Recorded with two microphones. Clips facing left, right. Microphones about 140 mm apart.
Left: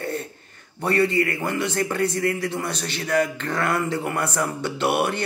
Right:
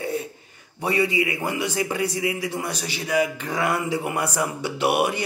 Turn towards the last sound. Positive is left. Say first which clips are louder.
# right 1 dB
turn(degrees=-10)  # may be behind; listen again after turning